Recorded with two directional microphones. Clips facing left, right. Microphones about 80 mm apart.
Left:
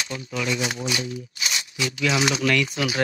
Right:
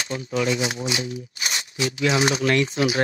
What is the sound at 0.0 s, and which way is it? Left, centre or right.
Speech, right.